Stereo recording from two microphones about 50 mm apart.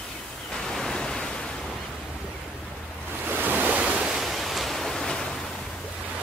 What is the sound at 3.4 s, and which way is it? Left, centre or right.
Waves, right.